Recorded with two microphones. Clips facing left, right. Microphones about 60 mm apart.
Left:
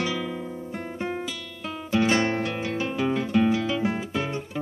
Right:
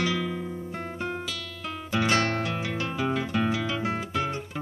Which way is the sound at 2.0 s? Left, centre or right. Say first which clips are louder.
Left 2 dB; centre.